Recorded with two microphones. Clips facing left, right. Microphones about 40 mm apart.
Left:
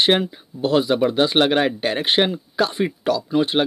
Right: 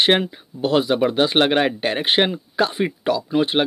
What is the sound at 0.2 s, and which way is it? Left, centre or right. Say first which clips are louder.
Speech: even; right.